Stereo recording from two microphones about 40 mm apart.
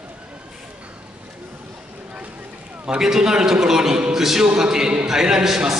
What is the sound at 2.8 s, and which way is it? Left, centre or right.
A man's voice, centre.